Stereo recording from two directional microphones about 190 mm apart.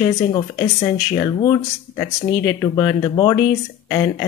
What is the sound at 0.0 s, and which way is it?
A woman's voice, 25° left (ahead or behind).